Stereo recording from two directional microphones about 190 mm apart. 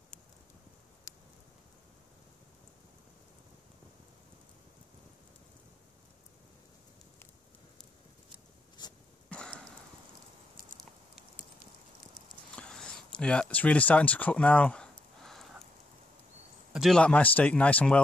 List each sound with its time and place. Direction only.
9.3 s sniff: 5° left (ahead or behind)
12.5 s a sound: 5° left (ahead or behind)
16.7 s speech: centre (ahead or behind)